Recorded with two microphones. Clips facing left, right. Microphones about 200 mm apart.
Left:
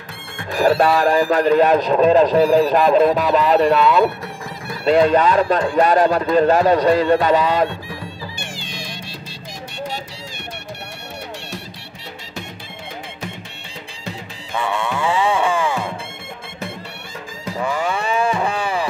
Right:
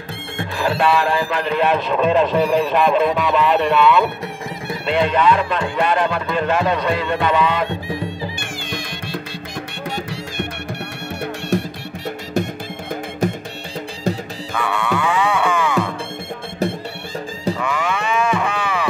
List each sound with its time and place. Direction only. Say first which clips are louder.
0.6 s speech: left 3 dB; 40° left (ahead or behind)
2.3 s speech: left 3 dB; centre (ahead or behind)
2.7 s speech: left 2 dB; 40° left (ahead or behind)
7.7 s music: right 6 dB; 20° right (ahead or behind)
8.6 s music: right 4 dB; 55° right (ahead or behind)
11.5 s music: right 12 dB; 50° right (ahead or behind)
14.5 s music: right 1 dB; 25° left (ahead or behind)
17.6 s a sound: left 1 dB; 35° left (ahead or behind)